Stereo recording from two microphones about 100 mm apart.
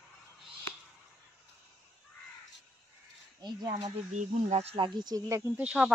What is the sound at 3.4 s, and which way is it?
Speech, 45° right (ahead or behind).